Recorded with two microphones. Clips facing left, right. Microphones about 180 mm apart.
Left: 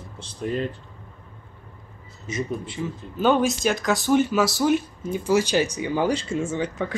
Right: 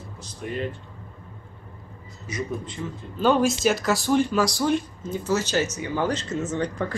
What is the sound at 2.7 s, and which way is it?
Speech, 5° left (ahead or behind).